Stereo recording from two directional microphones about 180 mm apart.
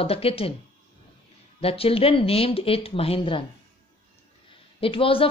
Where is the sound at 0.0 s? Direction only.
35° left (ahead or behind).